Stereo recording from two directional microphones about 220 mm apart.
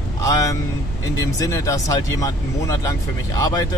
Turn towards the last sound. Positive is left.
turn(degrees=15)  # may be behind; listen again after turning